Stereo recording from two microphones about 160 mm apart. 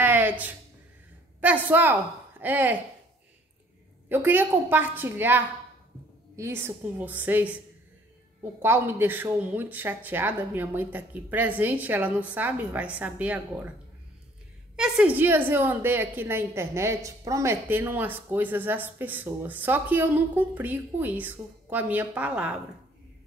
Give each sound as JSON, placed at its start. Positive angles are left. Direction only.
{"t": 0.0, "sound": "a sound", "side_deg": -10}
{"t": 1.4, "sound": "a woman's voice", "side_deg": -10}
{"t": 4.1, "sound": "a woman's voice", "side_deg": -10}
{"t": 14.8, "sound": "a woman's voice", "side_deg": -5}